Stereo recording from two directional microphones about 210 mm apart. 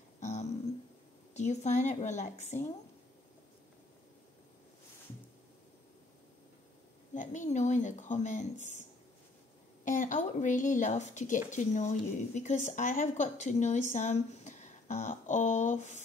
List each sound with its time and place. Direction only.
0.2 s a sound: 30° left (ahead or behind)
1.3 s speech: 35° left (ahead or behind)
7.2 s speech: 35° left (ahead or behind)
9.8 s speech: 35° left (ahead or behind)